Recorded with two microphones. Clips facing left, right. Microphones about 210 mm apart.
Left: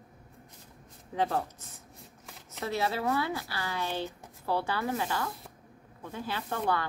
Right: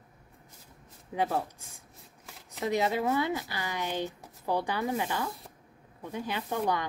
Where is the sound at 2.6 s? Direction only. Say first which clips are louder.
Right 3 dB; 15° right (ahead or behind).